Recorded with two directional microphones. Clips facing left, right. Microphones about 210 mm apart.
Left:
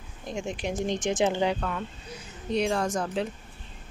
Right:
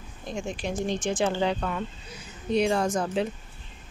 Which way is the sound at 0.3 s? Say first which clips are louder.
Even; 20° left (ahead or behind).